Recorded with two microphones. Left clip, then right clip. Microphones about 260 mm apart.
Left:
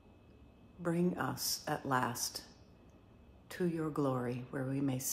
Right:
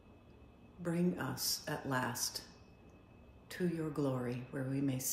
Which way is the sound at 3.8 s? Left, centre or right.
Left.